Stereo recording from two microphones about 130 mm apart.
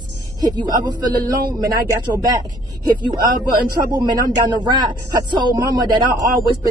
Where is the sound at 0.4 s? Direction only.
30° right (ahead or behind).